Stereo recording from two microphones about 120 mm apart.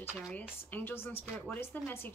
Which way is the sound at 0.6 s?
15° left (ahead or behind).